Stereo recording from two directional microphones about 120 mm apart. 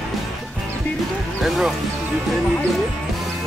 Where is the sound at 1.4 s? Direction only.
Centre (ahead or behind).